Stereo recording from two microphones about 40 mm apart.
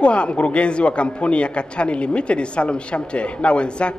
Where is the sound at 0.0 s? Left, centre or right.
Left.